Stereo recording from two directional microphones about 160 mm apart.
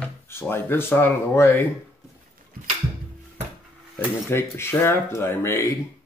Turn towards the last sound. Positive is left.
turn(degrees=15)  # may be behind; listen again after turning